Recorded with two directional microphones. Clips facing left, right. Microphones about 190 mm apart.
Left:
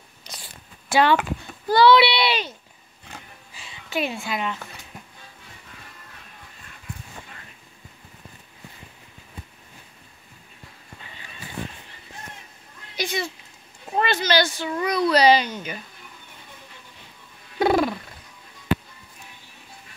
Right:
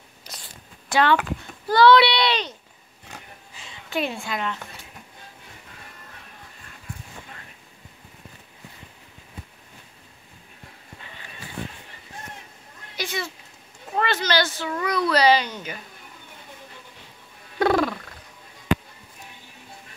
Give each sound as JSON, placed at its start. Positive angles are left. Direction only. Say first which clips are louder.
{"t": 0.3, "sound": "a sound", "louder": "left 1 dB", "side_deg": -5}
{"t": 0.8, "sound": "a child's voice", "louder": "left 1 dB", "side_deg": 10}
{"t": 3.9, "sound": "a woman's voice", "louder": "even", "side_deg": 5}
{"t": 12.9, "sound": "a child's voice", "louder": "left 3 dB", "side_deg": 15}
{"t": 17.6, "sound": "purr", "louder": "left 1 dB", "side_deg": 15}